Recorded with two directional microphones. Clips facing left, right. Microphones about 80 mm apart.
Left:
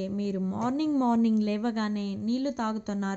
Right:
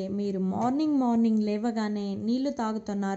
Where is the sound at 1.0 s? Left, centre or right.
Left.